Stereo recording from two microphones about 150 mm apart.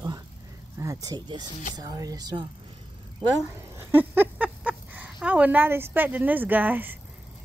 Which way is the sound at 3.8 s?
15° right (ahead or behind).